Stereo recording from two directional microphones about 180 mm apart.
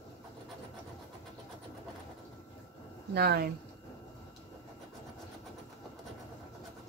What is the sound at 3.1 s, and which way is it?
Speech, 65° right (ahead or behind).